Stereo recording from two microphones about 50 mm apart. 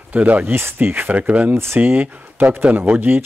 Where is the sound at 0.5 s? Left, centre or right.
Right.